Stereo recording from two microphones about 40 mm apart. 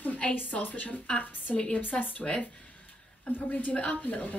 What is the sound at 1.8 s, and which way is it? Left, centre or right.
A woman's voice, left.